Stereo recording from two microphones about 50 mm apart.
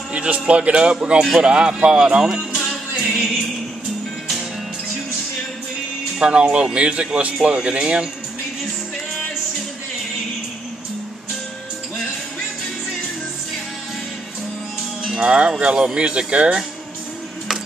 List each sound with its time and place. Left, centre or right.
0.1 s speech: right
3.0 s music: centre
6.1 s speech: centre
15.1 s speech: centre